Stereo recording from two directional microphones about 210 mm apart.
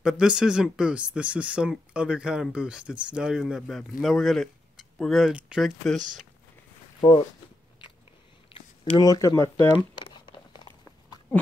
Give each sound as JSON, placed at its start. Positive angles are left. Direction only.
{"t": 0.0, "sound": "speech", "side_deg": -5}
{"t": 7.0, "sound": "speech", "side_deg": 20}
{"t": 8.5, "sound": "speech", "side_deg": 25}
{"t": 10.5, "sound": "clip-clop", "side_deg": 20}